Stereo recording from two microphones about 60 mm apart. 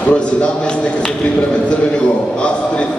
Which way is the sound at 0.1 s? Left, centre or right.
Centre.